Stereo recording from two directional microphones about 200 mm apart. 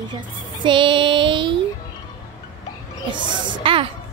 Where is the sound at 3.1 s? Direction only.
25° right (ahead or behind).